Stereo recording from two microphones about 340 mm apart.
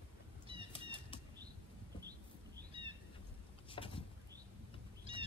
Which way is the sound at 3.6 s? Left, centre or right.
Centre.